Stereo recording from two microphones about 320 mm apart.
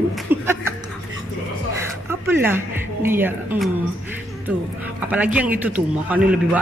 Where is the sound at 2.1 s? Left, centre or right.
Centre.